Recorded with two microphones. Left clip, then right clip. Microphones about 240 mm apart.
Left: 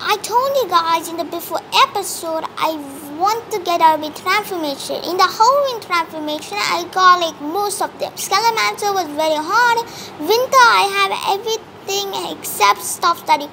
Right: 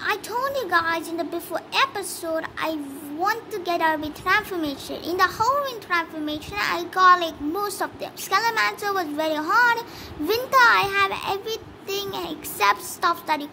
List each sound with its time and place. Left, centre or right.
0.0 s a woman's voice: right